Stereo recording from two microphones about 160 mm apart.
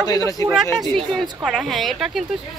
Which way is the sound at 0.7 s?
Centre (ahead or behind).